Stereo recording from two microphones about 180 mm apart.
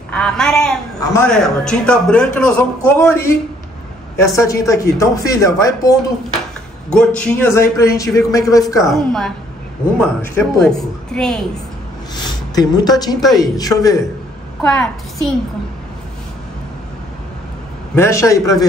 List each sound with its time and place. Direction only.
0.1 s a woman's voice: 5° left (ahead or behind)
6.9 s a man's voice: 5° left (ahead or behind)
8.9 s a woman's voice: centre (ahead or behind)
12.2 s speech: 20° left (ahead or behind)
13.2 s a woman's voice: centre (ahead or behind)
13.6 s speech: 20° left (ahead or behind)
14.6 s a woman's voice: 5° left (ahead or behind)
17.9 s a man's voice: 15° left (ahead or behind)